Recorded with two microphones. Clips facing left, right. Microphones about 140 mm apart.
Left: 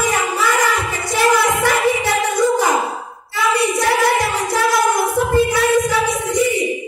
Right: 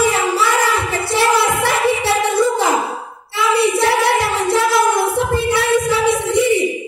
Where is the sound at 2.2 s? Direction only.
25° right (ahead or behind).